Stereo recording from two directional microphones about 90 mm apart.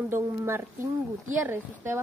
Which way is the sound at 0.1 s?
25° right (ahead or behind).